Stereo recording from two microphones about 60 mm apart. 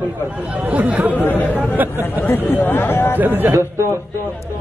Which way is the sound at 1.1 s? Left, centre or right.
Left.